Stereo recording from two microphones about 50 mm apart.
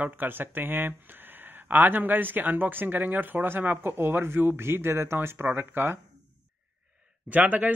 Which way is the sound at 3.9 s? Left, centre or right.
Right.